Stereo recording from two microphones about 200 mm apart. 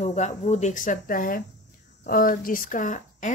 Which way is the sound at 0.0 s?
35° left (ahead or behind).